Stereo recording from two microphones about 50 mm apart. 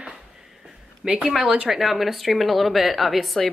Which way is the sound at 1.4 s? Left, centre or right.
Right.